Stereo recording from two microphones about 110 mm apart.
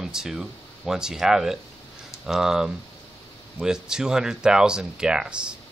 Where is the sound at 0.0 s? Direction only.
5° right (ahead or behind).